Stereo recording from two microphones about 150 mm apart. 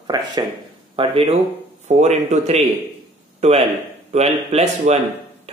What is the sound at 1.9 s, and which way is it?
Speech, 50° right (ahead or behind).